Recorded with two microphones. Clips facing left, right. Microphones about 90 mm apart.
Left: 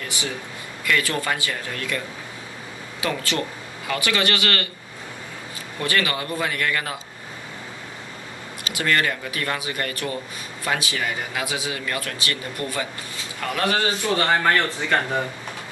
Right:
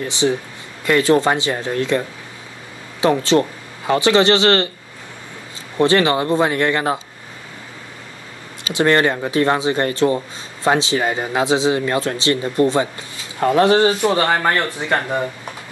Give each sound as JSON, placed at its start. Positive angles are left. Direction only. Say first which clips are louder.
{"t": 0.0, "sound": "speech", "louder": "right 11 dB", "side_deg": -25}
{"t": 5.8, "sound": "speech", "louder": "right 10 dB", "side_deg": -25}
{"t": 8.7, "sound": "speech", "louder": "right 8 dB", "side_deg": -30}